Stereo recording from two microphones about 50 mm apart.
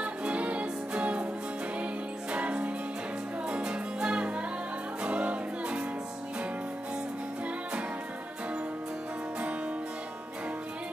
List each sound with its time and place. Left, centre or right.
0.0 s music: right
2.3 s music: right